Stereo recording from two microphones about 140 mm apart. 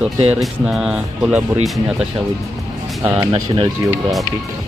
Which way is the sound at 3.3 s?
40° right (ahead or behind).